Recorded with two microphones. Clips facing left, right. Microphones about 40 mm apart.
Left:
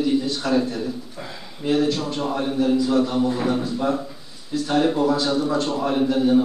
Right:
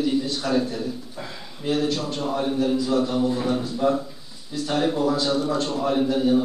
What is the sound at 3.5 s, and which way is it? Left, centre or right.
A man's voice, centre.